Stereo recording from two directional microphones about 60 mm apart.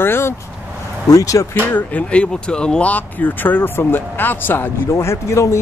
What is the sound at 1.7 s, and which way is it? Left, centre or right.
Speech, left.